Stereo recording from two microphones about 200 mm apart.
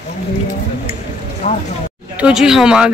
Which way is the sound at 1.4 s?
35° left (ahead or behind).